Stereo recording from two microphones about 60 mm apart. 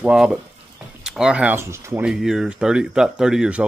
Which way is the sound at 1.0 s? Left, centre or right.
Centre.